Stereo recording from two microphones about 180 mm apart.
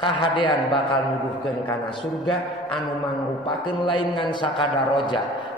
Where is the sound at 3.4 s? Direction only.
25° left (ahead or behind).